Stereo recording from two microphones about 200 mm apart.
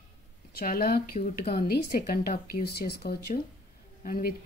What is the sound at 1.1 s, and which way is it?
A woman's voice, 35° left (ahead or behind).